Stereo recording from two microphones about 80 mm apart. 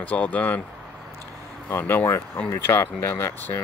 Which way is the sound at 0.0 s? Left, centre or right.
Left.